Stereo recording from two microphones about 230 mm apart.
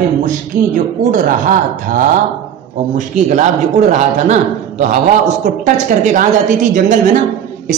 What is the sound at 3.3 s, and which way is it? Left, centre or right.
Speech, right.